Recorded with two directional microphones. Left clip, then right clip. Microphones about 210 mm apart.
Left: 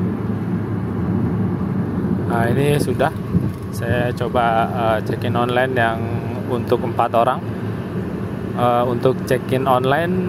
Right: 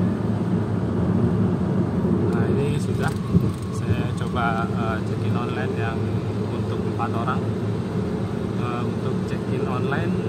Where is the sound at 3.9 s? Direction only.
30° left (ahead or behind).